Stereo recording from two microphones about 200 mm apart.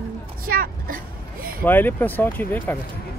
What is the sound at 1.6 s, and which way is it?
Speech, 10° left (ahead or behind).